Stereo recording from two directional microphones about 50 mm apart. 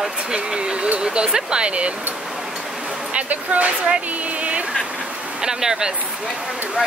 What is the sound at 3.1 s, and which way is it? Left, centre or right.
Speech, right.